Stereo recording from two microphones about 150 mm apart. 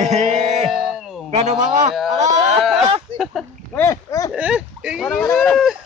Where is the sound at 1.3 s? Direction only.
50° right (ahead or behind).